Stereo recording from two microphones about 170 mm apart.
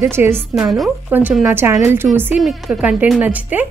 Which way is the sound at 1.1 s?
10° right (ahead or behind).